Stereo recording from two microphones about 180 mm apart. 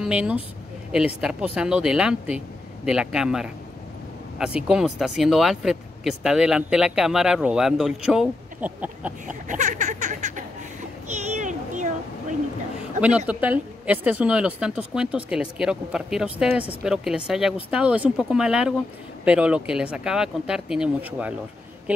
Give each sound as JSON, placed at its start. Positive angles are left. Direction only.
{"t": 0.0, "sound": "speech", "side_deg": -5}
{"t": 9.3, "sound": "speech", "side_deg": -45}
{"t": 11.1, "sound": "a sound", "side_deg": -40}
{"t": 13.3, "sound": "speech", "side_deg": -10}